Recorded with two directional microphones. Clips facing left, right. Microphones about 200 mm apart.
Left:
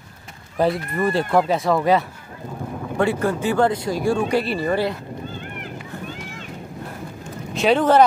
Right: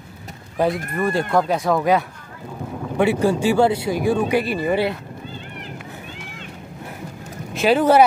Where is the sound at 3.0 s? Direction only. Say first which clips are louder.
Right 3 dB; 10° right (ahead or behind).